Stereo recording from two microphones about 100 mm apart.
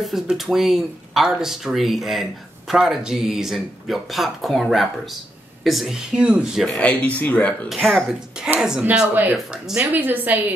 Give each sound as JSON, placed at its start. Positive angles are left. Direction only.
{"t": 0.0, "sound": "speech", "side_deg": 0}
{"t": 6.8, "sound": "a man's voice", "side_deg": 15}
{"t": 7.7, "sound": "speech", "side_deg": 0}
{"t": 8.8, "sound": "speech", "side_deg": -20}